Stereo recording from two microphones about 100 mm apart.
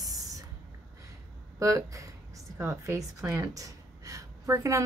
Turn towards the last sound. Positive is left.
turn(degrees=-30)  # may be behind; listen again after turning